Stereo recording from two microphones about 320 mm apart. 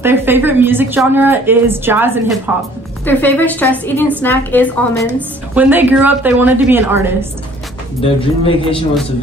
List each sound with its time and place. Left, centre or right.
0.0 s speech: centre
3.1 s a woman's voice: centre
5.5 s a woman's voice: centre
8.0 s speech: centre